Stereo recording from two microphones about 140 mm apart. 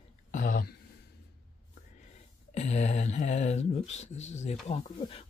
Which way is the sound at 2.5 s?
50° left (ahead or behind).